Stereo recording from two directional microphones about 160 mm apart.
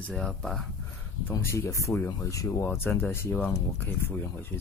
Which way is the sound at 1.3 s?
15° left (ahead or behind).